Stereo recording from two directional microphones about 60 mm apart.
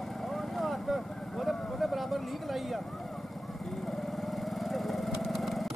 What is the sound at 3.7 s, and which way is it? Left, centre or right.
Lawn mower, centre.